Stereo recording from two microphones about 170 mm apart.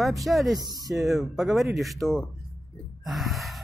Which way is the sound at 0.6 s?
25° right (ahead or behind).